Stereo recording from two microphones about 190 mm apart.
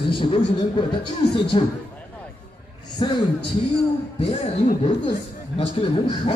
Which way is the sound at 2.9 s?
25° left (ahead or behind).